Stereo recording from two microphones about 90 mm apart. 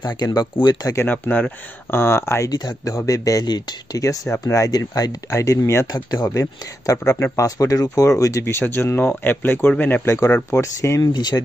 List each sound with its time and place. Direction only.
0.0 s speech: 45° left (ahead or behind)
0.9 s speech: 20° left (ahead or behind)
2.5 s speech: 45° left (ahead or behind)
6.1 s speech: 40° left (ahead or behind); by 10.0 s 20° left (ahead or behind)
10.0 s speech: 35° left (ahead or behind)
11.0 s speech: 50° left (ahead or behind)